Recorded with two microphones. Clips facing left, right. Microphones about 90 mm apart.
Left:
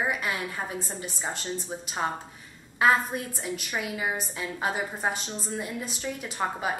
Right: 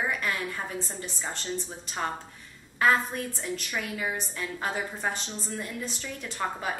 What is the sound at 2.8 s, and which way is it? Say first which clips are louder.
A woman's voice: left 1 dB; 15° left (ahead or behind).